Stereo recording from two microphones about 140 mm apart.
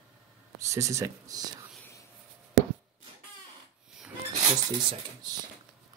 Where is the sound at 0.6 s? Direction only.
20° right (ahead or behind).